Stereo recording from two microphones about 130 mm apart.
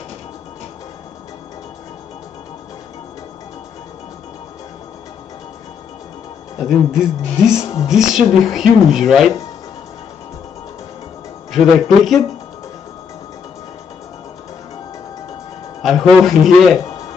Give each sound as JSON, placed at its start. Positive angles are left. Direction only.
{"t": 6.6, "sound": "speech", "side_deg": -5}
{"t": 11.5, "sound": "speech", "side_deg": 0}
{"t": 15.8, "sound": "speech", "side_deg": 0}
{"t": 16.8, "sound": "music", "side_deg": 25}